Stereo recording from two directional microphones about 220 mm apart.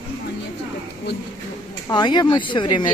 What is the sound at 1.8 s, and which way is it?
Speech, 20° left (ahead or behind).